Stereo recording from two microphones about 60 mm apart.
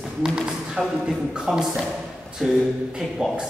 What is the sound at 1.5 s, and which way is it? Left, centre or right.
A man's voice, centre.